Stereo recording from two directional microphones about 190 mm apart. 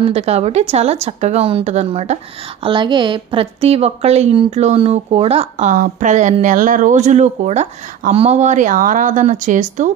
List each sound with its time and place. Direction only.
0.0 s a woman's voice: 35° right (ahead or behind)